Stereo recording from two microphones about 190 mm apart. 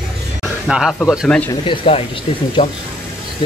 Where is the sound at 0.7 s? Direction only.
5° right (ahead or behind).